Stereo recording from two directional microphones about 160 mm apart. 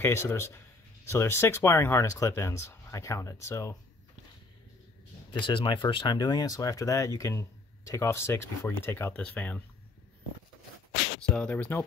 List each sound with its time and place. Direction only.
0.0 s speech: 15° left (ahead or behind)
5.3 s speech: 30° left (ahead or behind); by 9.6 s 10° left (ahead or behind)
11.1 s speech: 5° left (ahead or behind)